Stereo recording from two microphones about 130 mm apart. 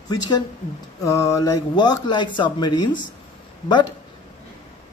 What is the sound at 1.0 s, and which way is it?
Speech, 25° left (ahead or behind).